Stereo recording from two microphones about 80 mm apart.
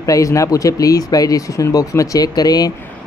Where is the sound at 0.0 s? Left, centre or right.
Left.